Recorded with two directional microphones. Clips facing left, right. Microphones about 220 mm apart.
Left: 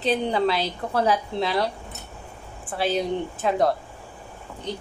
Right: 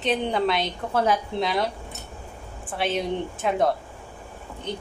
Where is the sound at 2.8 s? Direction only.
Centre (ahead or behind).